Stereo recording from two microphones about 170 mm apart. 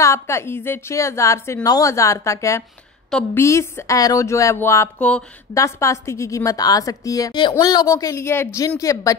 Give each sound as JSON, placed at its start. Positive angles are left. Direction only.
{"t": 0.0, "sound": "a woman's voice", "side_deg": 15}
{"t": 5.5, "sound": "a woman's voice", "side_deg": 15}